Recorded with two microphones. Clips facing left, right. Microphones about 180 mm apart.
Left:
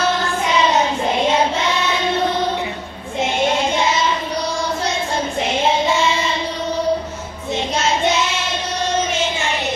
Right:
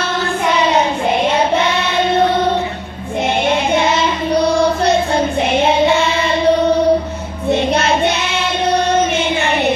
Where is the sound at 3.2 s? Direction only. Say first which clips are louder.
Right 2 dB; 60° right (ahead or behind).